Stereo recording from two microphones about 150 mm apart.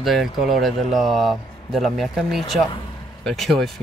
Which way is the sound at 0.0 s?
Centre (ahead or behind).